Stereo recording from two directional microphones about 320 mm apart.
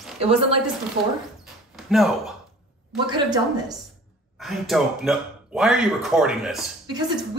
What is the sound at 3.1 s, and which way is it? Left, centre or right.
Speech, centre.